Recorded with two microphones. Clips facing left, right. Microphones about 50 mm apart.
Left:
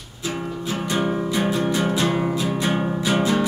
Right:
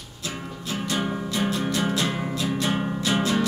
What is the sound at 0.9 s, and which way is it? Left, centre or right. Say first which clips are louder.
Music: left 5 dB; centre.